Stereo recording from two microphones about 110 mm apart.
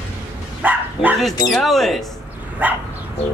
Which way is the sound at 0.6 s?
15° right (ahead or behind).